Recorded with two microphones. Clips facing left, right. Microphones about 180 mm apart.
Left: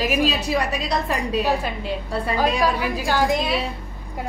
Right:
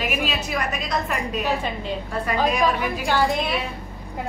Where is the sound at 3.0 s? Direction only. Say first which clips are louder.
Even; 10° left (ahead or behind).